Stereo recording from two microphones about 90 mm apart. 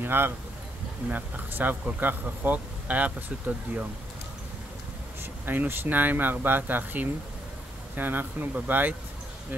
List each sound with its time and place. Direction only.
0.0 s speech: 20° right (ahead or behind)
5.4 s speech: 20° right (ahead or behind)